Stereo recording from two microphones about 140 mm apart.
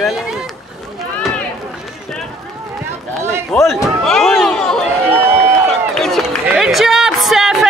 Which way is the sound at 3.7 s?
Centre (ahead or behind).